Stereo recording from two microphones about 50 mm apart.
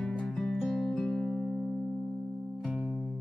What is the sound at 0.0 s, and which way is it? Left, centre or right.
Music, centre.